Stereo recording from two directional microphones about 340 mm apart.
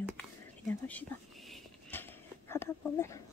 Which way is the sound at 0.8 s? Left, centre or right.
Centre.